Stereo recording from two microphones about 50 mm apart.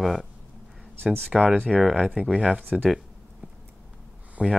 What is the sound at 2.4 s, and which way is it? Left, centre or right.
Speech, right.